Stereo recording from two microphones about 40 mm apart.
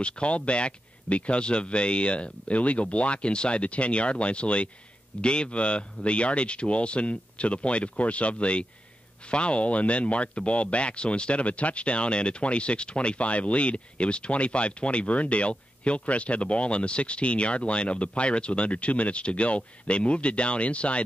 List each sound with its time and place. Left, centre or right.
0.0 s speech: left